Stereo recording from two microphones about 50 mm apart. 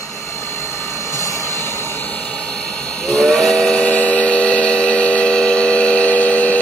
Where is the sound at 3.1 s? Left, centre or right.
Centre.